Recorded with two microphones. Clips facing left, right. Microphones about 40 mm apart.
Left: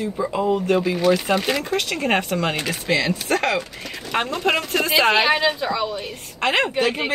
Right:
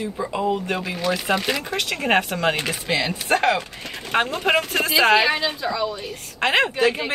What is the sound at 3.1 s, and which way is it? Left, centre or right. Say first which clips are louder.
Speech: right 1 dB; right.